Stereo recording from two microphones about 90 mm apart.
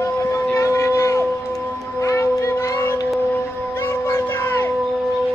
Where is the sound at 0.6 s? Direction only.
35° left (ahead or behind).